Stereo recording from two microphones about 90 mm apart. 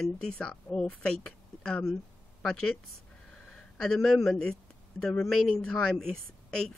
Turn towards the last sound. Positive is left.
turn(degrees=5)  # may be behind; listen again after turning